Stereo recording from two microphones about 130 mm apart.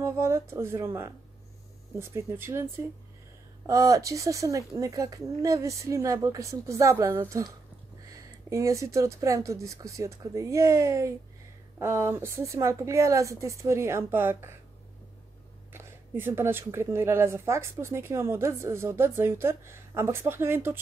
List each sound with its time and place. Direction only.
0.0 s speech: 20° right (ahead or behind)
15.7 s speech: 15° right (ahead or behind)